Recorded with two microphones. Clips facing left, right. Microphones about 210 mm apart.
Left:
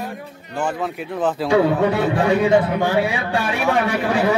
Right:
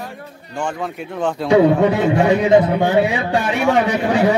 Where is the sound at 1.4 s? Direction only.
20° right (ahead or behind).